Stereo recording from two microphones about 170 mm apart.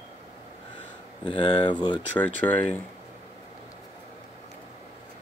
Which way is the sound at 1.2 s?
30° left (ahead or behind).